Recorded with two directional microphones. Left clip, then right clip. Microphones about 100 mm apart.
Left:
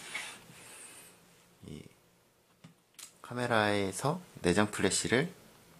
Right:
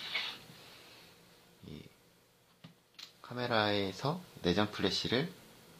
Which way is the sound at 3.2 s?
35° left (ahead or behind).